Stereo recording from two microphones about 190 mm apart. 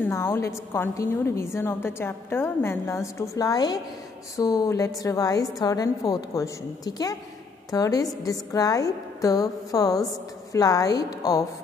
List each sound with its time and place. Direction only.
0.0 s a woman's voice: 10° left (ahead or behind)